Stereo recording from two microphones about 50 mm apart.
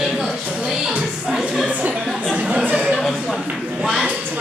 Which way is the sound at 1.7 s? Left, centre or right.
Right.